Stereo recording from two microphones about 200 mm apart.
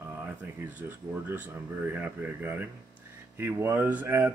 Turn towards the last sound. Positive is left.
turn(degrees=-10)  # may be behind; listen again after turning